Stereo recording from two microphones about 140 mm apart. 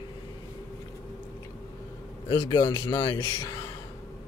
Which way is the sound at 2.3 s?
30° left (ahead or behind).